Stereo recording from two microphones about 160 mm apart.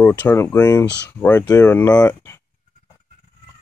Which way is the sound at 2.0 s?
15° left (ahead or behind).